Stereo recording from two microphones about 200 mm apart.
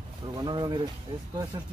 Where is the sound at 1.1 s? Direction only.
25° right (ahead or behind).